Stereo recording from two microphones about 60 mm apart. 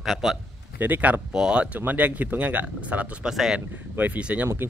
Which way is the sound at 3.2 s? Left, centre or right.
Centre.